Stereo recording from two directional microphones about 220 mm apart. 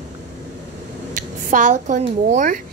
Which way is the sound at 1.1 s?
35° right (ahead or behind).